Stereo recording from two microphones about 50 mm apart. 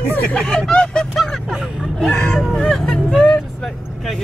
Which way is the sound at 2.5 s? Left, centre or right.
Centre.